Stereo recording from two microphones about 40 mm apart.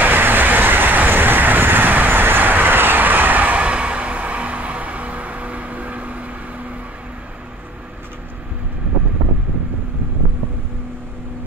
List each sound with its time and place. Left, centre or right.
0.0 s vehicle: right
3.6 s music: right